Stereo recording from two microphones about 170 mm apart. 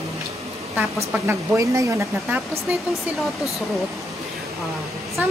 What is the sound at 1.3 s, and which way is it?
Speech, 20° right (ahead or behind).